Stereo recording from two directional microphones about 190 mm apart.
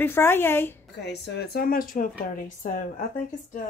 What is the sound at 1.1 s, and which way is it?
Speech, 55° left (ahead or behind).